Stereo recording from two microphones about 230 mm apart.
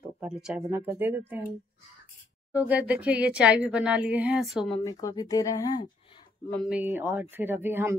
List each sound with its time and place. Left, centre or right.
0.2 s speech: centre
2.5 s speech: centre
4.6 s speech: centre
6.6 s speech: centre